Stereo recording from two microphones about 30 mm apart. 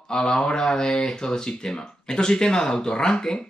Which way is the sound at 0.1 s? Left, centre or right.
Left.